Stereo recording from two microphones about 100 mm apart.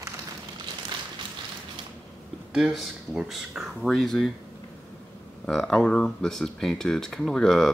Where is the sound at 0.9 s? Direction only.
50° right (ahead or behind).